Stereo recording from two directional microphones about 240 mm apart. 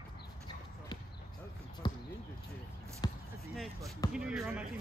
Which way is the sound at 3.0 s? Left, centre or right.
Centre.